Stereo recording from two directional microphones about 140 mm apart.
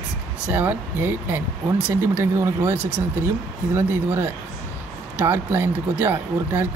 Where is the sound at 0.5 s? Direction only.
15° right (ahead or behind).